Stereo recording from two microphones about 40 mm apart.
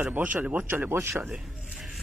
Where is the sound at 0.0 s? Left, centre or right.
Right.